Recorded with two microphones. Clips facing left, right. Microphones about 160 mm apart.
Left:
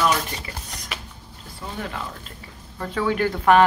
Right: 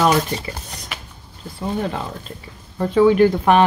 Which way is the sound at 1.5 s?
25° right (ahead or behind).